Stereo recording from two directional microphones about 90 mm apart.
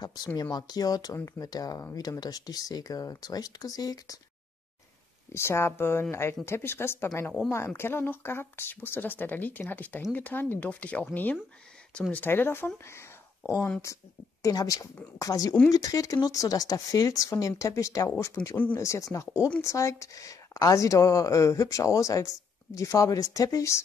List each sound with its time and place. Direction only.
0.0 s speech: 50° left (ahead or behind)
5.3 s speech: 30° left (ahead or behind); by 12.3 s 15° left (ahead or behind)
12.3 s speech: 25° left (ahead or behind)
14.4 s a woman's voice: 45° left (ahead or behind)